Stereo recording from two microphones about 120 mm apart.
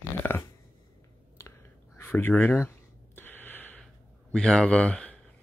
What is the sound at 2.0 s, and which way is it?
Speech, 20° left (ahead or behind).